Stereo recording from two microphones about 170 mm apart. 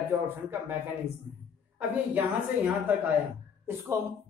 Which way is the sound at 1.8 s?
10° right (ahead or behind).